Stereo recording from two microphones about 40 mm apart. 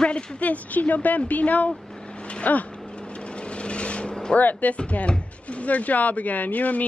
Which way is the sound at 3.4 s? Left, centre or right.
Left.